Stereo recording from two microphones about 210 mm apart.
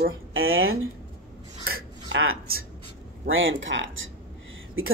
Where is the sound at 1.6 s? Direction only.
75° right (ahead or behind).